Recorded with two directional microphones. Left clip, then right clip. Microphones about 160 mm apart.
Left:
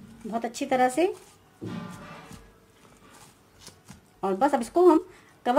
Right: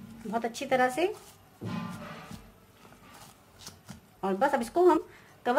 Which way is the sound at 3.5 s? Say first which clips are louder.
Right 1 dB; 10° right (ahead or behind).